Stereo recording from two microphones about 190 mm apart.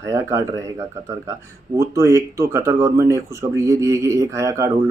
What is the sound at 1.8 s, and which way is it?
Speech, 15° right (ahead or behind).